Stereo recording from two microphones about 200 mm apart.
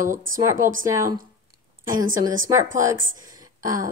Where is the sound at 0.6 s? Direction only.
40° right (ahead or behind).